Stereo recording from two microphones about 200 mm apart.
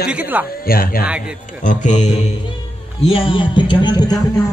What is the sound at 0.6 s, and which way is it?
A man's voice, 45° left (ahead or behind).